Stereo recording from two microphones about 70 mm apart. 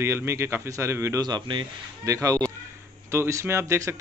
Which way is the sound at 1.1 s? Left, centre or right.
Right.